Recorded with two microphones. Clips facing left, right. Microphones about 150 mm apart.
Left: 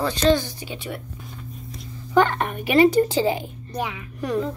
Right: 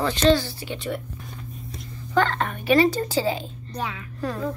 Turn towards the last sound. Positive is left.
turn(degrees=15)  # may be behind; listen again after turning